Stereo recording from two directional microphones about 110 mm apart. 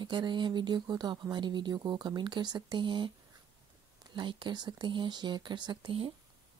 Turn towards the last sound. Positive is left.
turn(degrees=-50)  # may be behind; listen again after turning